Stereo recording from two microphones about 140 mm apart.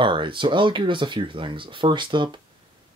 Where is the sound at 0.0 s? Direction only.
35° right (ahead or behind).